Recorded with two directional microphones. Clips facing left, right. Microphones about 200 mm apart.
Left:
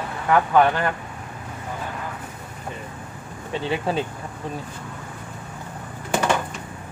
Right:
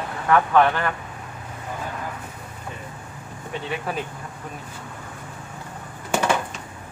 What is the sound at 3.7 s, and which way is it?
Speech, 30° left (ahead or behind).